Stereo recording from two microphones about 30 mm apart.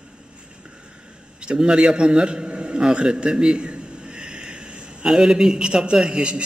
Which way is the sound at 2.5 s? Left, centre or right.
Right.